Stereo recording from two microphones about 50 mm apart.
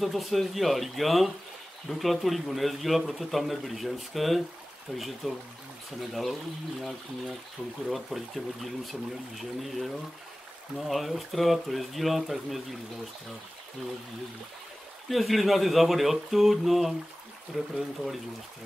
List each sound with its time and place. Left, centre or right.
0.0 s speech: centre
15.0 s speech: centre